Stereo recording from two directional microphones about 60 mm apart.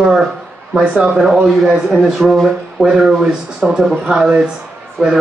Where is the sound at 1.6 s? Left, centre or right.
Centre.